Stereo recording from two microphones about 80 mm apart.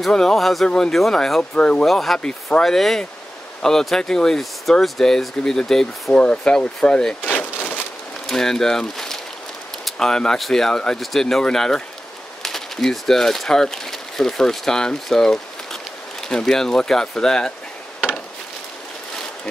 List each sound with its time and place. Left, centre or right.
0.0 s speech: centre
0.7 s speech: centre
7.3 s a sound: centre
8.3 s speech: centre